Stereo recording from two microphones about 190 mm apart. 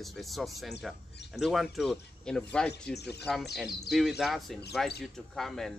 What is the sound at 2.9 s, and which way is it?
Speech, 60° left (ahead or behind).